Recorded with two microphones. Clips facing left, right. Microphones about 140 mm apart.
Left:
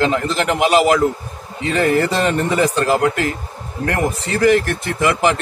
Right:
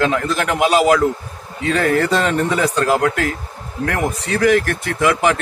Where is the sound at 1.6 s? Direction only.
10° left (ahead or behind).